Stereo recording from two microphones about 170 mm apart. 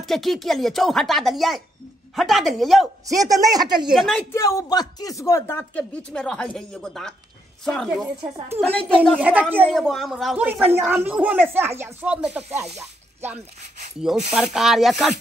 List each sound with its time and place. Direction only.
0.0 s speech: centre (ahead or behind)
3.1 s speech: 20° right (ahead or behind)
3.9 s speech: centre (ahead or behind)
4.3 s speech: 20° left (ahead or behind)
9.2 s a woman's voice: 10° right (ahead or behind)
9.7 s a woman's voice: centre (ahead or behind)